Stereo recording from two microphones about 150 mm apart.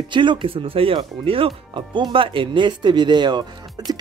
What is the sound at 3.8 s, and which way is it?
Music, 25° right (ahead or behind).